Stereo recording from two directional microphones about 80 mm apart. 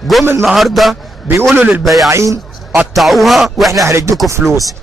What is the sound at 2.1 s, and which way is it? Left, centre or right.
Speech, right.